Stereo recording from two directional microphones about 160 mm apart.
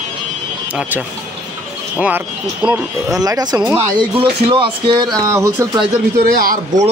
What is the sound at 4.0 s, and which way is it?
Speech, 30° right (ahead or behind).